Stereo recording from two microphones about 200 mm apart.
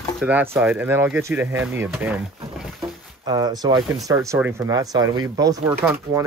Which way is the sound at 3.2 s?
20° right (ahead or behind).